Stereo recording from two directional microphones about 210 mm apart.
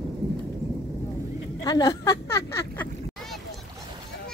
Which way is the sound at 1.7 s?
20° left (ahead or behind).